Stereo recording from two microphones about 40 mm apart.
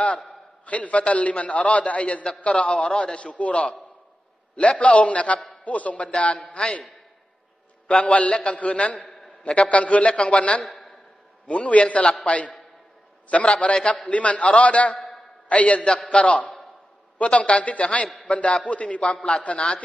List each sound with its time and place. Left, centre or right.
0.7 s a man's voice: left
7.9 s a man's voice: left
10.6 s a sound: centre
11.4 s a man's voice: left